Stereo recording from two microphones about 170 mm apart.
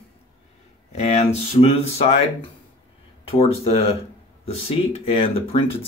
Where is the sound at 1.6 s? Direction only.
35° left (ahead or behind).